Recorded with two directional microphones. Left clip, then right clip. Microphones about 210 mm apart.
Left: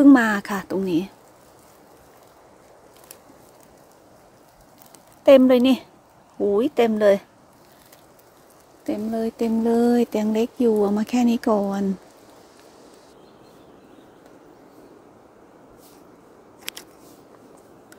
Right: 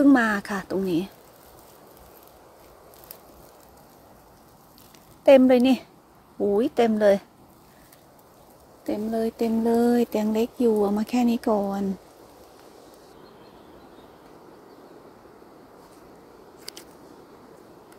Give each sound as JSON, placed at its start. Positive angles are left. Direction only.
{"t": 0.0, "sound": "speech", "side_deg": 15}
{"t": 5.2, "sound": "speech", "side_deg": 10}
{"t": 8.8, "sound": "speech", "side_deg": 5}